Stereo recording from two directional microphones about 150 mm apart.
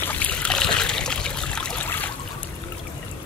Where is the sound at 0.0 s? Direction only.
10° left (ahead or behind).